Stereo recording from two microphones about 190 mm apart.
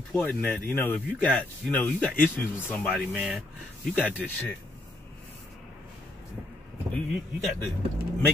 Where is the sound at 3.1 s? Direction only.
5° right (ahead or behind).